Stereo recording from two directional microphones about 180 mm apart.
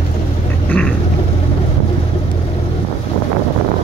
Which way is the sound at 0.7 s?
10° left (ahead or behind).